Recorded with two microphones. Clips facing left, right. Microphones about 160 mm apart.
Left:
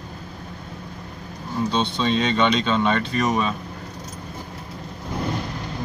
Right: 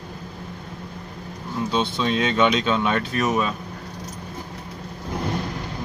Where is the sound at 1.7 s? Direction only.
5° right (ahead or behind).